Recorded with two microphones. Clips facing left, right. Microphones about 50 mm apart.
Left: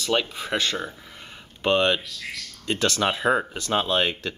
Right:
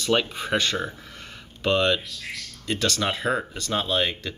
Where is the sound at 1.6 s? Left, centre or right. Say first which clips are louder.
Left 1 dB; left.